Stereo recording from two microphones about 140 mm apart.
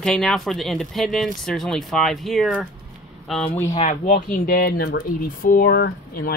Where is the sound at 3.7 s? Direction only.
60° left (ahead or behind).